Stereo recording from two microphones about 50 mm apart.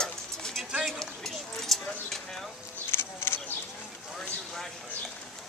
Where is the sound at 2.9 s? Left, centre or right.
Left.